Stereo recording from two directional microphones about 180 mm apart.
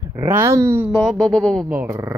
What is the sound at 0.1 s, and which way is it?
Speech, 15° right (ahead or behind).